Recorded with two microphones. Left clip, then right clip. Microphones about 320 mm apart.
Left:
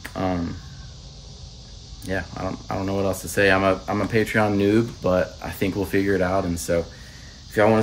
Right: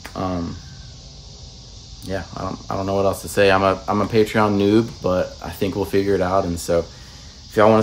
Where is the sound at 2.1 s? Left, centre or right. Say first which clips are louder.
Right 1 dB; centre.